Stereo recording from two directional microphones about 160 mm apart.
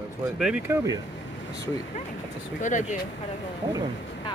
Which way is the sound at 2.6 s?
50° left (ahead or behind).